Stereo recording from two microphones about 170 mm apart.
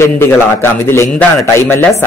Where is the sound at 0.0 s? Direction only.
15° left (ahead or behind).